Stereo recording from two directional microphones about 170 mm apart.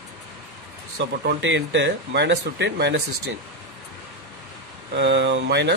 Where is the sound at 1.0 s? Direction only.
90° right.